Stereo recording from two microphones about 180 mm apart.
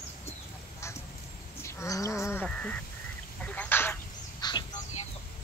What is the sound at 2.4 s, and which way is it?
Speech, 5° left (ahead or behind).